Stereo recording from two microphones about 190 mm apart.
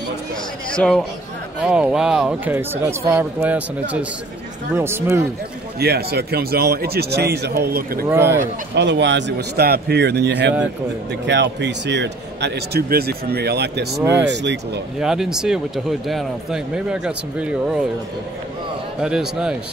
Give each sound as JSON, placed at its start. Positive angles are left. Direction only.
{"t": 0.7, "sound": "speech", "side_deg": 5}
{"t": 1.6, "sound": "a man's voice", "side_deg": -5}
{"t": 5.8, "sound": "speech", "side_deg": -55}
{"t": 8.1, "sound": "a man's voice", "side_deg": -10}
{"t": 8.7, "sound": "speech", "side_deg": -65}
{"t": 15.0, "sound": "speech", "side_deg": -5}
{"t": 18.9, "sound": "speech", "side_deg": -5}